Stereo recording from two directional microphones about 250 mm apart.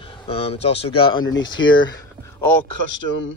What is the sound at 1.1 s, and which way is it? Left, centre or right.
Speech, left.